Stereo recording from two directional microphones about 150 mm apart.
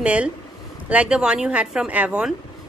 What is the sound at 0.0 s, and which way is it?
Speech, 10° right (ahead or behind).